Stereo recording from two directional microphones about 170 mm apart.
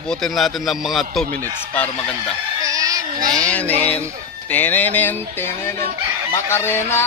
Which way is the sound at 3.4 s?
10° left (ahead or behind).